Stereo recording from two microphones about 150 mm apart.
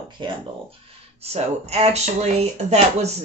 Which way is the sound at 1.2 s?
45° right (ahead or behind).